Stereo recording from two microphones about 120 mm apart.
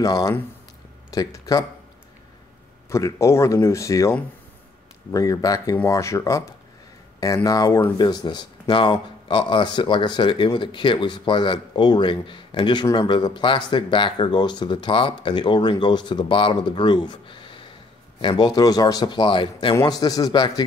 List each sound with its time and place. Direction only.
0.0 s speech: 30° left (ahead or behind)
2.9 s speech: 25° left (ahead or behind)
5.1 s speech: 30° left (ahead or behind)
19.7 s speech: 30° left (ahead or behind)